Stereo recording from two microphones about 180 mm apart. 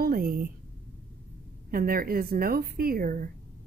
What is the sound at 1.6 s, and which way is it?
A woman's voice, 55° right (ahead or behind).